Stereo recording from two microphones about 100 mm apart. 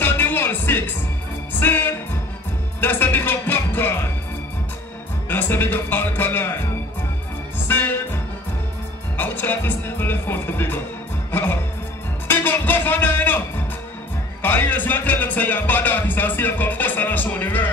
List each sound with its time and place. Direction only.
0.0 s music: 20° left (ahead or behind)
5.3 s music: 20° left (ahead or behind)
7.6 s music: 20° left (ahead or behind)
12.3 s music: 20° left (ahead or behind)
14.4 s music: 20° left (ahead or behind)